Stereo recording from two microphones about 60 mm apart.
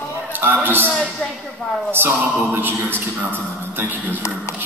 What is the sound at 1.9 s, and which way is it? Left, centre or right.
Speech, right.